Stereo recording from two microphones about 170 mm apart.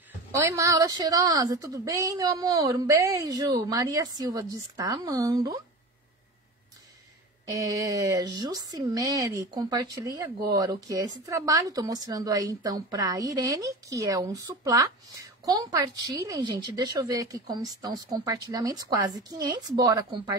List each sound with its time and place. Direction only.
0.3 s speech: 20° right (ahead or behind)
7.4 s speech: 20° right (ahead or behind)